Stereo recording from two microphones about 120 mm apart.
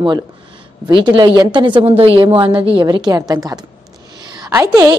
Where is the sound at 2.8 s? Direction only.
35° right (ahead or behind).